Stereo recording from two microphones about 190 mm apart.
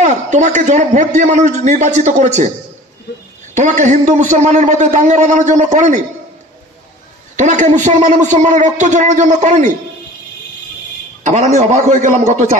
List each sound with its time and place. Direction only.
0.0 s a man's voice: 40° right (ahead or behind)
3.5 s a man's voice: 40° right (ahead or behind)
7.3 s a man's voice: 40° right (ahead or behind)
11.2 s a man's voice: 40° right (ahead or behind)